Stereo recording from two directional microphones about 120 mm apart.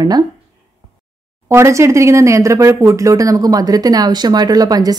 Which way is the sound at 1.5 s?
25° right (ahead or behind).